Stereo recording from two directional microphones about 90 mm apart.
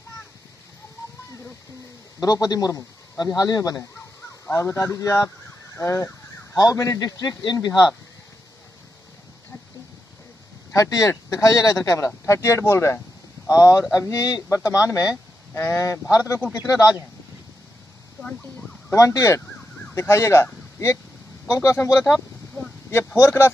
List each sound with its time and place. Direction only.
2.1 s speech: 45° left (ahead or behind)
5.8 s car alarm: 30° left (ahead or behind)
6.5 s speech: 40° left (ahead or behind)
10.7 s speech: 35° left (ahead or behind)
18.9 s speech: 35° left (ahead or behind)
21.5 s speech: 30° left (ahead or behind)
21.9 s speech: centre (ahead or behind)
23.1 s speech: 25° left (ahead or behind)